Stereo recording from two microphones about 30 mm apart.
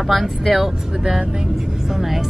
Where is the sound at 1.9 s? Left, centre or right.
Centre.